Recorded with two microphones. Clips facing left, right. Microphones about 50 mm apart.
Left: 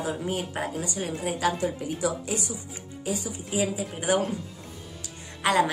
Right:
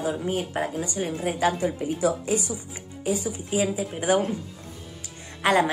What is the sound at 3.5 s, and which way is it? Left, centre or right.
Speech, centre.